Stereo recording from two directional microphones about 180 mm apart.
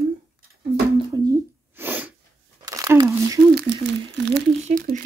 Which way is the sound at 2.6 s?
20° right (ahead or behind).